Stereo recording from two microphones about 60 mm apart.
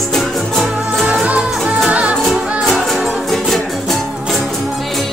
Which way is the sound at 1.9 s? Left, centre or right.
Right.